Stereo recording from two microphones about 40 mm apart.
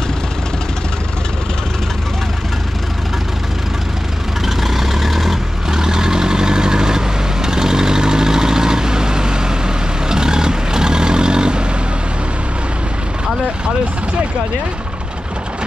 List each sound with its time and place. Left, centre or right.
4.5 s vehicle: centre
5.7 s vehicle: centre